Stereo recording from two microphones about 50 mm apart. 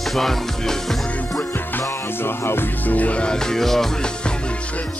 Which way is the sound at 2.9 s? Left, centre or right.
Left.